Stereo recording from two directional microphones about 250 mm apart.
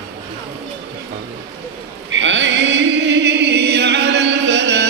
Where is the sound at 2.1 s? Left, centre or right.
Right.